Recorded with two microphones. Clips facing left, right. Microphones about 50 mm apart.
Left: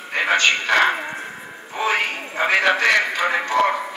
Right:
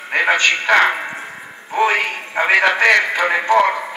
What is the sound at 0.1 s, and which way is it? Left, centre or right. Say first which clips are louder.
A man's voice: right 3 dB; right.